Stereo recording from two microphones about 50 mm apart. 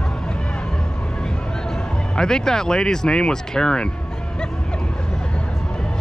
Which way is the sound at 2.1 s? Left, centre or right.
Centre.